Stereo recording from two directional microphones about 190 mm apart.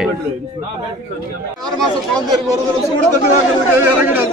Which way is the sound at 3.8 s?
10° right (ahead or behind).